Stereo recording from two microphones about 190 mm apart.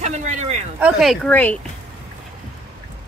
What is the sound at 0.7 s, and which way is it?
Speech, 5° right (ahead or behind).